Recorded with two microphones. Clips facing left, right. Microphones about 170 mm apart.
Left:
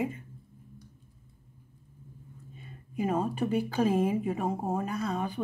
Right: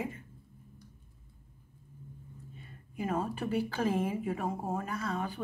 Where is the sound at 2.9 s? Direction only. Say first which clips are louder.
Left 4 dB; 20° left (ahead or behind).